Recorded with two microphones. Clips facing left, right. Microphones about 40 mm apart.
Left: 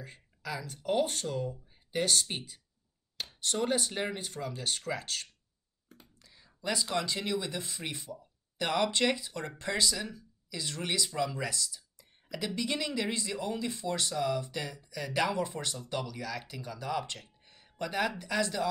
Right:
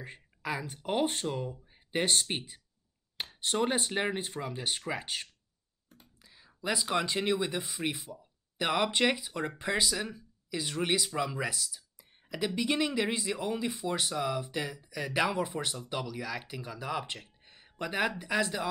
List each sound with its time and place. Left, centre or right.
0.0 s speech: right